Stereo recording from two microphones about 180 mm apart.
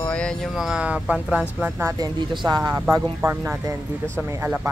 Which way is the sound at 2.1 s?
25° right (ahead or behind).